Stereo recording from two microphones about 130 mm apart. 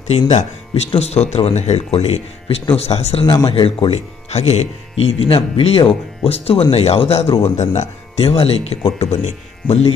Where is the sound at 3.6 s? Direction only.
50° left (ahead or behind).